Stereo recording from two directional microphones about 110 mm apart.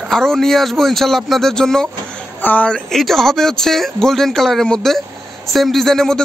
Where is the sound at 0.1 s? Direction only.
5° left (ahead or behind).